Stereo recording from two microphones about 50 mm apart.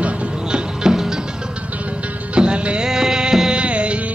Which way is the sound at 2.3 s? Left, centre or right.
Right.